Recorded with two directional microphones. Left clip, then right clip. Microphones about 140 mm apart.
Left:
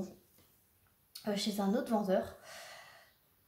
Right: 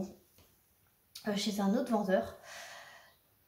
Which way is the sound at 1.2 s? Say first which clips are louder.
Right 1 dB; 25° left (ahead or behind).